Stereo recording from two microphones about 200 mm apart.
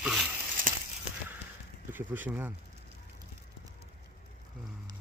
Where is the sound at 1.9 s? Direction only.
10° right (ahead or behind).